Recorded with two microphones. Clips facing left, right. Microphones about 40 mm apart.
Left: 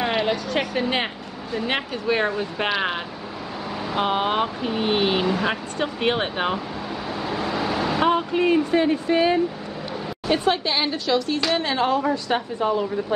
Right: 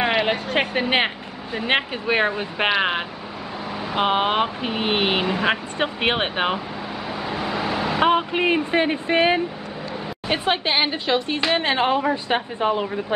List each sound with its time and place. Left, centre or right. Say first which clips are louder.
0.0 s speech: right 2 dB; right
5.2 s a woman's voice: right 1 dB; right
7.2 s vehicle: even; centre
8.0 s a woman's voice: right 2 dB; right